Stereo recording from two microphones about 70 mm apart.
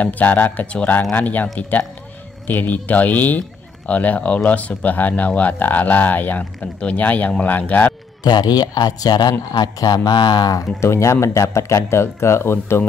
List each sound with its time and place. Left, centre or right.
0.0 s speech: left
8.2 s a man's voice: left
10.8 s speech: left